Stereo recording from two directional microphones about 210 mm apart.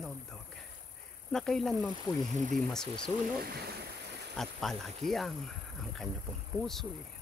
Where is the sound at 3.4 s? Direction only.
50° right (ahead or behind).